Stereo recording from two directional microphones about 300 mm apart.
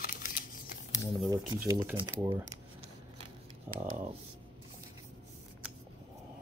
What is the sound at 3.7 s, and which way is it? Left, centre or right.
Speech, centre.